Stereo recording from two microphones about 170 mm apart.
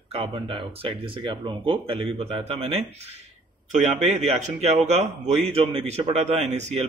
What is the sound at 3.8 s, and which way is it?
A man's voice, 45° right (ahead or behind).